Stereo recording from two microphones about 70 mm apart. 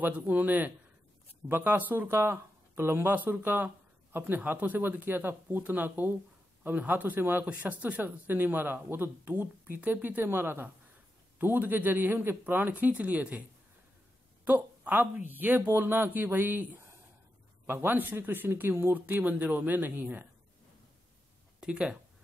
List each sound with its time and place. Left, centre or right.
0.0 s speech: right
14.4 s speech: right
21.5 s speech: centre